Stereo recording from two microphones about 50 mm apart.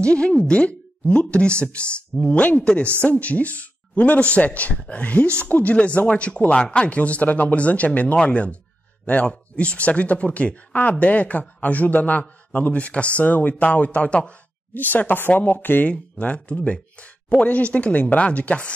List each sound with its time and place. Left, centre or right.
0.0 s speech: centre
14.7 s speech: left
15.9 s speech: left